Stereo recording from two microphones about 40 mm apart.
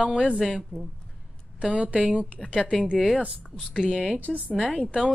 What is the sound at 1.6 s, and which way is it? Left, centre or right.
A woman's voice, right.